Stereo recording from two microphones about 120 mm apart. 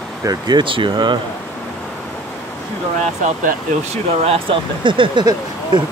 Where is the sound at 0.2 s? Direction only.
35° right (ahead or behind).